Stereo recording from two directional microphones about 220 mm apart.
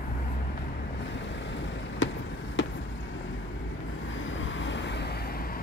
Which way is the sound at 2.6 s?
55° left (ahead or behind).